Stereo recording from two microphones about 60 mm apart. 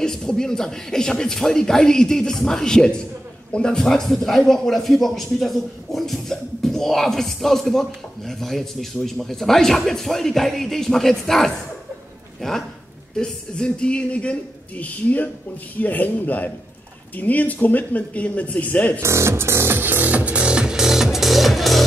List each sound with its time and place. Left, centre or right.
0.0 s speech: centre
18.9 s music: right; by 21.8 s centre